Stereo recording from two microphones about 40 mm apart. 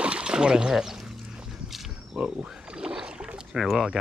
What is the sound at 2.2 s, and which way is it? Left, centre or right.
Rowboat, right.